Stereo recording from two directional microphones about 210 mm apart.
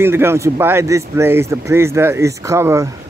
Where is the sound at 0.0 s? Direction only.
10° right (ahead or behind).